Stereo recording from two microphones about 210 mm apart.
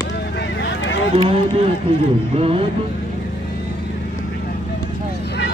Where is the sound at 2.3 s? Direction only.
25° right (ahead or behind).